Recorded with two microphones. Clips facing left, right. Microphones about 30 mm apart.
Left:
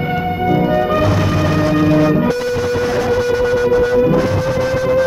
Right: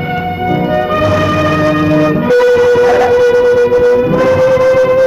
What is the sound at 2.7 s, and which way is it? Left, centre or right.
Shofar, right.